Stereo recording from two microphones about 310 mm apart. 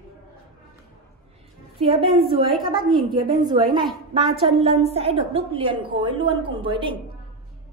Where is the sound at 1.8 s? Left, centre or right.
Centre.